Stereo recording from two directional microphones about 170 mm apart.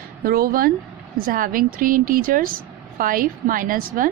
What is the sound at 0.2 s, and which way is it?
A woman's voice, 60° right (ahead or behind).